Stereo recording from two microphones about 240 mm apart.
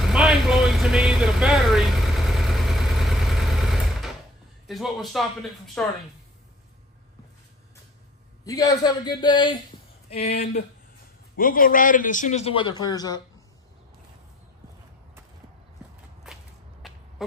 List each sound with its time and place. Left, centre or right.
0.0 s vehicle: centre
4.6 s speech: centre
8.5 s a man's voice: centre
10.2 s a man's voice: left; by 13.2 s centre
16.3 s whip: centre
16.8 s a sound: centre